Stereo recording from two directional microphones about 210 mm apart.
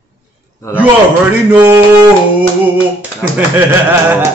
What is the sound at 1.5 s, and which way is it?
Speech, 15° right (ahead or behind).